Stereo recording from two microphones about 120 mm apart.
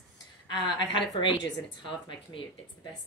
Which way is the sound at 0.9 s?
40° left (ahead or behind).